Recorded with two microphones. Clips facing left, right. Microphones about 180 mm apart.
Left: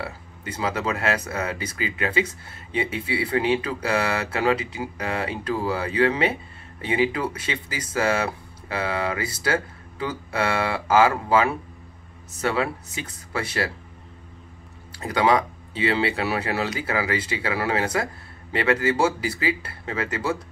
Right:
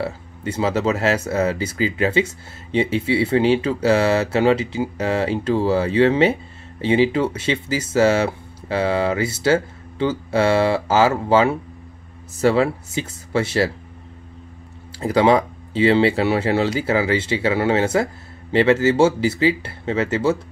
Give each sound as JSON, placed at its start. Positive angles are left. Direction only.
{"t": 0.0, "sound": "speech", "side_deg": -30}
{"t": 15.0, "sound": "speech", "side_deg": -30}